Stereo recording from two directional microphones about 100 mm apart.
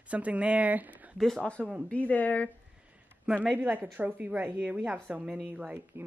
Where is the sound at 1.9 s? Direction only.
15° left (ahead or behind).